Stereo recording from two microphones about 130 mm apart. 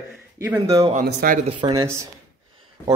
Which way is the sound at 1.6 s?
25° right (ahead or behind).